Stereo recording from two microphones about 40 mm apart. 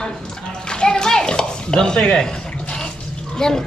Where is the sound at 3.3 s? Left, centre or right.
Centre.